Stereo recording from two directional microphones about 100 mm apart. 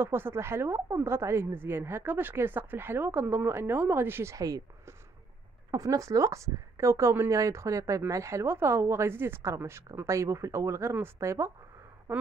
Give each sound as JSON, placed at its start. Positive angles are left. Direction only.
{"t": 0.0, "sound": "a woman's voice", "side_deg": -20}